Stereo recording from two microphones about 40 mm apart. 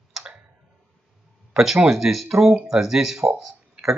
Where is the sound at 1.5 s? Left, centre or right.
Centre.